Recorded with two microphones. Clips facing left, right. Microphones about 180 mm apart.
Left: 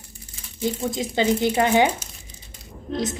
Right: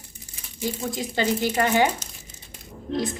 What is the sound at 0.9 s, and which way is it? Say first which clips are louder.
Speech: left 3 dB; 20° left (ahead or behind).